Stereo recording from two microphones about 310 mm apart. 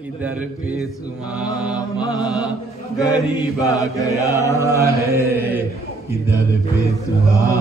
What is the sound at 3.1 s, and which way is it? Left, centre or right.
Mantra, centre.